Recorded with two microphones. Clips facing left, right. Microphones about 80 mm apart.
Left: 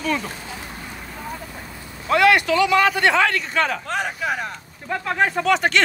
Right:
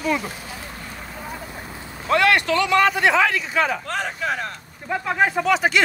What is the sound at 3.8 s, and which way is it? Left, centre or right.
Speech, centre.